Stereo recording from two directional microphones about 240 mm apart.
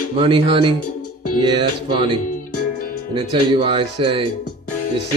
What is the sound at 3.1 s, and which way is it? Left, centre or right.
Speech, right.